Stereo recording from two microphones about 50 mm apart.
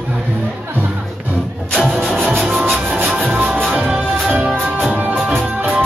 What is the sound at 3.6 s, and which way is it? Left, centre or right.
Music, centre.